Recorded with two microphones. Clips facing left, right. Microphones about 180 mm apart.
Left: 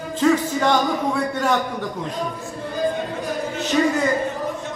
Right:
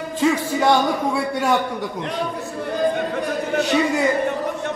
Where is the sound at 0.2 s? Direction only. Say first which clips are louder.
Left 1 dB; 10° right (ahead or behind).